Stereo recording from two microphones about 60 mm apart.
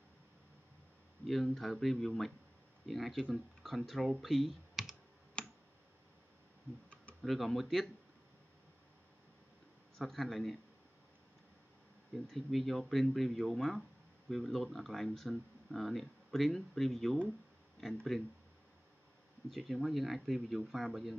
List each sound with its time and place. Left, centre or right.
1.2 s speech: centre
5.4 s tick: centre
7.2 s speech: centre
9.9 s speech: centre
12.3 s speech: centre
19.5 s speech: centre